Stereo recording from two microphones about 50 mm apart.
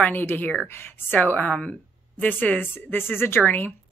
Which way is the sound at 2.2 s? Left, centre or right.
Left.